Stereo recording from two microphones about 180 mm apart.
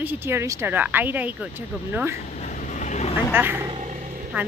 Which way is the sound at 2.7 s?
40° left (ahead or behind).